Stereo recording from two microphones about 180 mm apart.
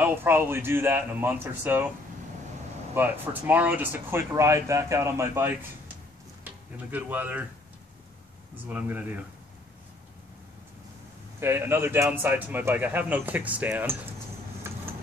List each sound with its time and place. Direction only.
0.0 s a man's voice: 10° right (ahead or behind)
2.9 s a man's voice: 10° right (ahead or behind)
8.6 s a man's voice: 10° right (ahead or behind)
11.3 s a man's voice: 15° right (ahead or behind)
14.7 s vehicle: 15° right (ahead or behind)